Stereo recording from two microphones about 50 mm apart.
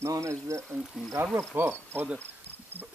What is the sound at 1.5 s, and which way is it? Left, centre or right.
Speech, right.